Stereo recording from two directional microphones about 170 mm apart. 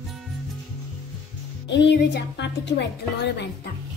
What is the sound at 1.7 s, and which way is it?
A woman's voice, 90° left.